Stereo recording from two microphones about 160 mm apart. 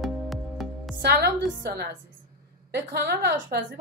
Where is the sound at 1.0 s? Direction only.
85° right.